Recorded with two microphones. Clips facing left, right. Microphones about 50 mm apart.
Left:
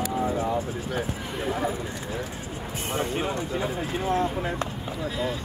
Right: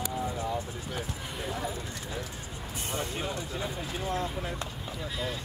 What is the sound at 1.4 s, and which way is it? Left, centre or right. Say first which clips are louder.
Speech: left 7 dB; left.